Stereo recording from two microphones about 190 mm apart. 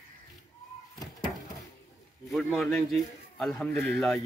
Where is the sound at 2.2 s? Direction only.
Centre (ahead or behind).